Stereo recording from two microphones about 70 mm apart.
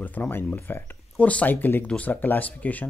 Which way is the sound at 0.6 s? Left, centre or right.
Left.